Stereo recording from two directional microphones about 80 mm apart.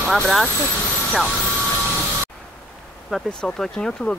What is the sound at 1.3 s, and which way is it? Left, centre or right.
Vehicle, left.